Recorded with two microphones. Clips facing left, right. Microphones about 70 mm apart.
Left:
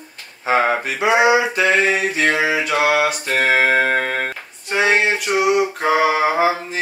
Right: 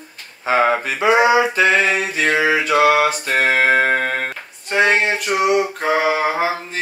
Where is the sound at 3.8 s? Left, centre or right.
Right.